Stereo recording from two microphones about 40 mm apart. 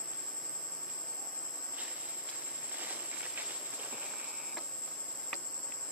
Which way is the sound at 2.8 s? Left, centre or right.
Right.